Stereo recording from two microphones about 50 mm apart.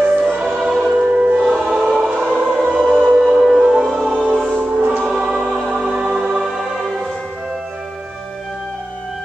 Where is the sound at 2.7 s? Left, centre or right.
Right.